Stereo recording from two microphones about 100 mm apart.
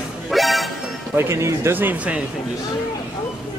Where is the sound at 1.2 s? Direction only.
25° right (ahead or behind).